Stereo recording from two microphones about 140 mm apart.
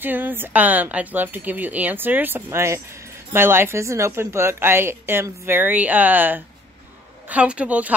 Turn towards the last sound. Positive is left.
turn(degrees=-10)  # may be behind; listen again after turning